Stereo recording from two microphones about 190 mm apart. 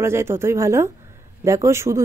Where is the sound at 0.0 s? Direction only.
15° right (ahead or behind).